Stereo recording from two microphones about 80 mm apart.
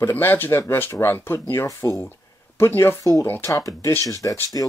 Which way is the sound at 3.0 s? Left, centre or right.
Left.